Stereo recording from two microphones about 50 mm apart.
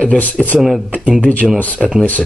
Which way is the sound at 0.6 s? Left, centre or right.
Centre.